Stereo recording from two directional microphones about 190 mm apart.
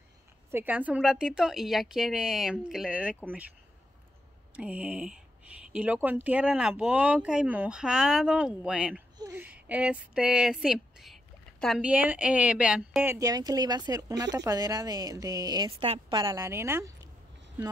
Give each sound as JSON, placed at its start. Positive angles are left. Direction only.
{"t": 0.5, "sound": "speech", "side_deg": -10}
{"t": 4.6, "sound": "a woman's voice", "side_deg": -5}